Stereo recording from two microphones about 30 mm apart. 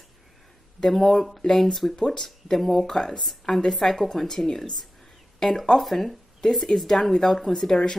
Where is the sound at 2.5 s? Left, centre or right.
Centre.